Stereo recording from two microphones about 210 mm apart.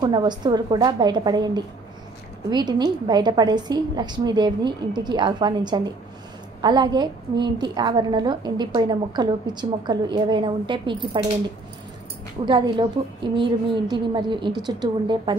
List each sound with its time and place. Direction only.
0.0 s a woman's voice: 20° right (ahead or behind)
12.4 s a woman's voice: 20° right (ahead or behind)